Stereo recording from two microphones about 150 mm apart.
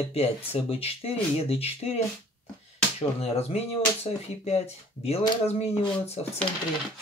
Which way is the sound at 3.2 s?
45° left (ahead or behind).